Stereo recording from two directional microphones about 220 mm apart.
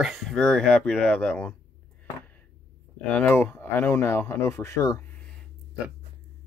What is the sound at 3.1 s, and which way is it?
Speech, 5° left (ahead or behind).